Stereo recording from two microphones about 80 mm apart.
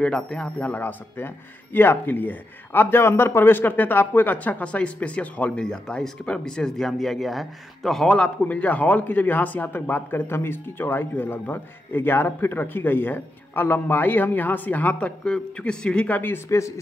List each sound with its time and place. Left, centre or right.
0.0 s speech: centre
8.5 s speech: centre
16.4 s speech: left